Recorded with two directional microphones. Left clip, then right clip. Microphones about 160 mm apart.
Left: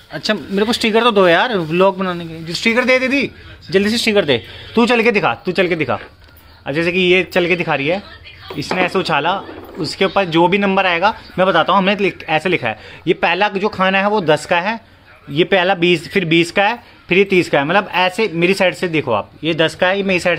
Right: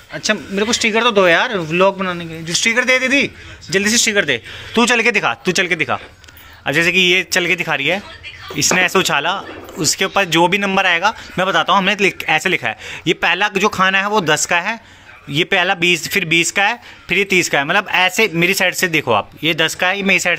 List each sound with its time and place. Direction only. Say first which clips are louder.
0.1 s speech: even; 20° left (ahead or behind)
2.4 s speech: even; centre (ahead or behind)